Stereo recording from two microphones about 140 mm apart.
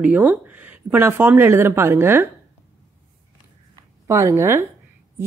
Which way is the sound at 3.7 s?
20° right (ahead or behind).